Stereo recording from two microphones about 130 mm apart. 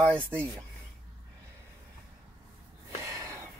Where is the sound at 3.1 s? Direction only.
25° right (ahead or behind).